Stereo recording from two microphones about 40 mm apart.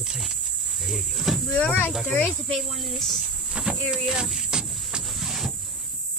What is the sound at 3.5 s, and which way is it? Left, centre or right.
Speech, centre.